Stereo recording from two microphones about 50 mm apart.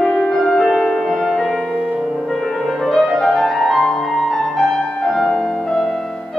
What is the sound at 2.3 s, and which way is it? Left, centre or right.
Music, centre.